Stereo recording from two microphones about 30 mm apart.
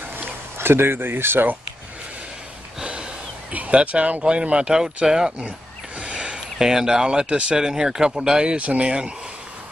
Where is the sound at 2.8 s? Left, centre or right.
Right.